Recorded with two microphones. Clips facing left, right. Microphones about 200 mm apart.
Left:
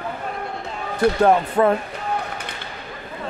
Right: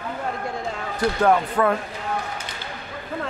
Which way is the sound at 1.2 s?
25° left (ahead or behind).